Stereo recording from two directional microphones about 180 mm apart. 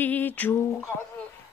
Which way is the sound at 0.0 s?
10° left (ahead or behind).